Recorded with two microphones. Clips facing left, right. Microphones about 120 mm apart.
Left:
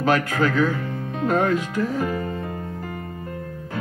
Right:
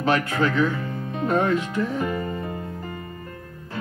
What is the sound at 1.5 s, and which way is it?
Speech, 5° left (ahead or behind).